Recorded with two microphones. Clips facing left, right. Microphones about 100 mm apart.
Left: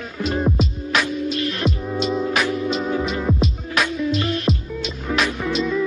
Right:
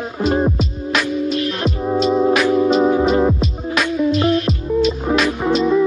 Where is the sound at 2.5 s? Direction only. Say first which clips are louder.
Right 8 dB; 40° right (ahead or behind).